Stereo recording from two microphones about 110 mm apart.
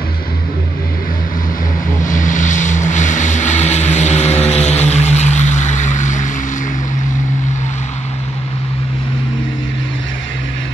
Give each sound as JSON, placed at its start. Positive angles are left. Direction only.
{"t": 2.4, "sound": "vehicle", "side_deg": 90}